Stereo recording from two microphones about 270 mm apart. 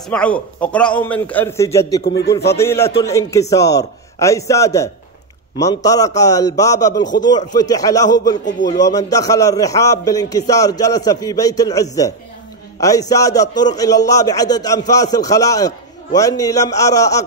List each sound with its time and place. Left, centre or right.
0.1 s a man's voice: centre
2.0 s a man's voice: left
2.5 s a man's voice: centre